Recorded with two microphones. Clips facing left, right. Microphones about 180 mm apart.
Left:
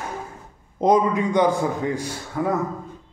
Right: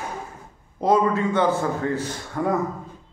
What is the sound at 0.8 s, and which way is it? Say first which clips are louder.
A man's voice: left 1 dB; 15° left (ahead or behind).